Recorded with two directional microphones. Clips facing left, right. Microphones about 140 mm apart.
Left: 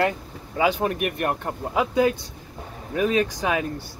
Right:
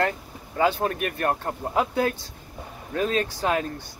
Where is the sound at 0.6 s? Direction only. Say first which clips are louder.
Left 1 dB; 15° left (ahead or behind).